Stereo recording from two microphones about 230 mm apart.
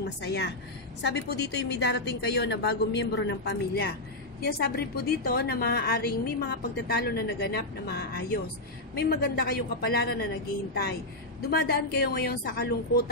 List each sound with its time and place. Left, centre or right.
0.0 s a woman's voice: left